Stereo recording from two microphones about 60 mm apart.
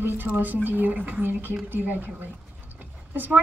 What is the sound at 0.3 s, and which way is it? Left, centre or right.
A woman's voice, right.